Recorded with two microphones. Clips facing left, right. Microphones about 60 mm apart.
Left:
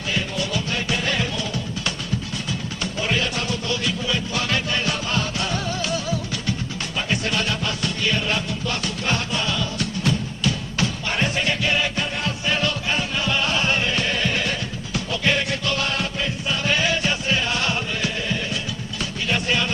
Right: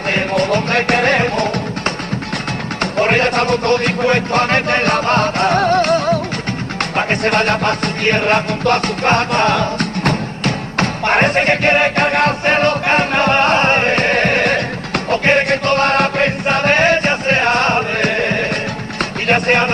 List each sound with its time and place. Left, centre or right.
0.1 s music: right
2.8 s music: right